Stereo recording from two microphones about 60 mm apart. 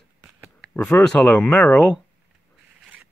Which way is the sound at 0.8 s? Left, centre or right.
Centre.